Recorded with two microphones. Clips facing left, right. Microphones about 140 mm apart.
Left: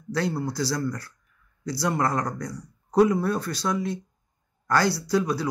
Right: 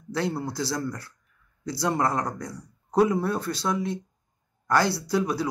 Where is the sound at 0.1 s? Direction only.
20° right (ahead or behind).